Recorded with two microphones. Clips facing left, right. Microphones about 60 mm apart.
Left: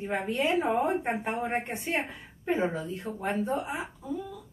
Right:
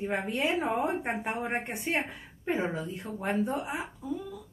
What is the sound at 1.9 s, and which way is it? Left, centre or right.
A woman's voice, centre.